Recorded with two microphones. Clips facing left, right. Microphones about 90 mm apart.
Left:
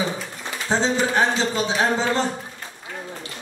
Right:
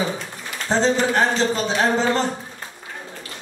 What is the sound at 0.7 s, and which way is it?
Speech, 5° left (ahead or behind).